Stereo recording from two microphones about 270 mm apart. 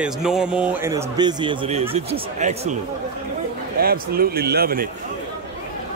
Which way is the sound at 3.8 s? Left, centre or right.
Right.